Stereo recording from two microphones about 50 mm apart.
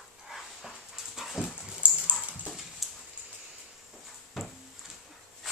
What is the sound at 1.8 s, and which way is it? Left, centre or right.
Dog, right.